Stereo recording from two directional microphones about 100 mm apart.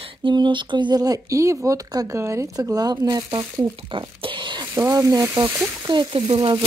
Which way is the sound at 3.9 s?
55° right (ahead or behind).